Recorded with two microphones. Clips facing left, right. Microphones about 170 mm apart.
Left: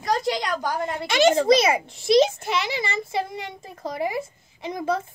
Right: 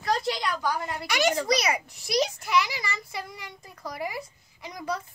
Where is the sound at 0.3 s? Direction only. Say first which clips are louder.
Left 4 dB; 45° left (ahead or behind).